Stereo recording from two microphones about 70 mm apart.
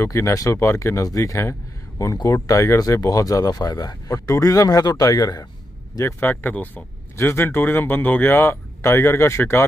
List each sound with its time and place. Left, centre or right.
0.0 s speech: left
2.1 s speech: left
6.4 s speech: left
7.2 s speech: left
8.5 s speech: left